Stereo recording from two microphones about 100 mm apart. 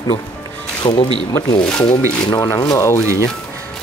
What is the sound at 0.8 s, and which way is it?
Speech, 70° left (ahead or behind).